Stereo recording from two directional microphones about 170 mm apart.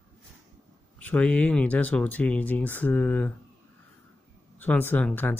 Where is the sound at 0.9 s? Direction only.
10° left (ahead or behind).